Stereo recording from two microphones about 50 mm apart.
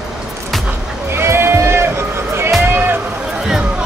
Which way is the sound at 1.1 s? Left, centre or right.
Right.